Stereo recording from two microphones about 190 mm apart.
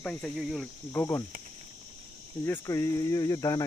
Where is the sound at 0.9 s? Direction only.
15° left (ahead or behind).